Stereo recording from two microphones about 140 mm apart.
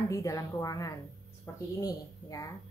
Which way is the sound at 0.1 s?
25° left (ahead or behind).